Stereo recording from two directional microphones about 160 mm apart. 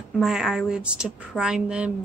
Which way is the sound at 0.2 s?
Centre (ahead or behind).